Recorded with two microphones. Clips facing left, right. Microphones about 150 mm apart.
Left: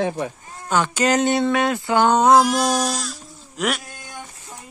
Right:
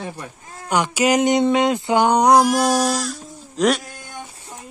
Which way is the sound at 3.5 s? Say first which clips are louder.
Right 6 dB; 35° right (ahead or behind).